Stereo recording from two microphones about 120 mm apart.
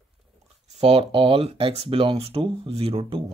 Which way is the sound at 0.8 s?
55° right (ahead or behind).